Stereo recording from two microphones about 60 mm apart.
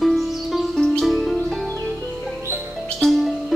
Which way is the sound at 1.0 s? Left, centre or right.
Centre.